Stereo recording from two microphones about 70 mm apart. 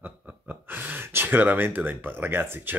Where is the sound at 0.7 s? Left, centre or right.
Right.